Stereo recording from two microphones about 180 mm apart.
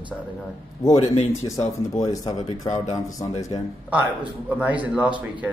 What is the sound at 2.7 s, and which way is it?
Speech, 40° left (ahead or behind).